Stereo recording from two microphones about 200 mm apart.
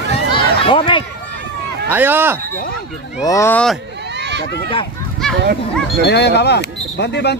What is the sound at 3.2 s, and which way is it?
Speech, 15° left (ahead or behind).